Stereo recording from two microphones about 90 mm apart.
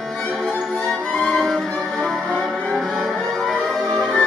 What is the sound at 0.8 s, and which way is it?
Violin, 5° left (ahead or behind).